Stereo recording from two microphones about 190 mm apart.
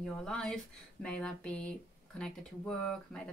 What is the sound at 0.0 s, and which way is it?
Speech, 5° left (ahead or behind).